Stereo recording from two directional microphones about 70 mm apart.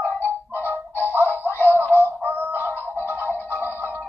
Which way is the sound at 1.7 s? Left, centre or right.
Right.